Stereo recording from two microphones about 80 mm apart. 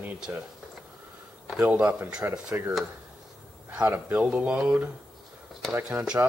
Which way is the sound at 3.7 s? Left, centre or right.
Right.